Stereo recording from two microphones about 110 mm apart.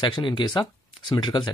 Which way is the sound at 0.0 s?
45° left (ahead or behind).